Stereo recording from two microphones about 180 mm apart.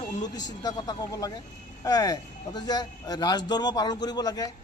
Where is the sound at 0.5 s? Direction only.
20° left (ahead or behind).